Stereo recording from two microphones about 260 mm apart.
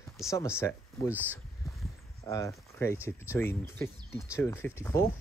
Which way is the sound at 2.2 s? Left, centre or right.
Centre.